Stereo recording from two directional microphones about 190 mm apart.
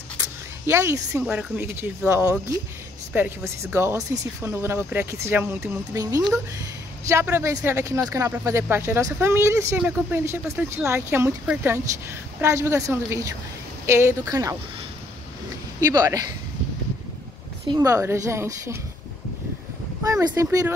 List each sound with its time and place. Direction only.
0.2 s a sound: 15° right (ahead or behind)
1.2 s speech: 10° right (ahead or behind)
15.9 s speech: 20° right (ahead or behind)
17.6 s speech: 20° right (ahead or behind)
20.1 s speech: 15° right (ahead or behind)